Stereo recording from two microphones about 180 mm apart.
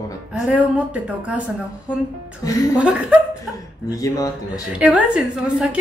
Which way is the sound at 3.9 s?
20° left (ahead or behind).